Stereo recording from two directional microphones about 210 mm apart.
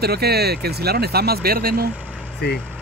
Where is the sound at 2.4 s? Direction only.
50° left (ahead or behind).